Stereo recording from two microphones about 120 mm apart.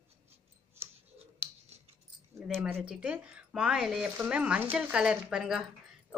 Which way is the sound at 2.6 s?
5° right (ahead or behind).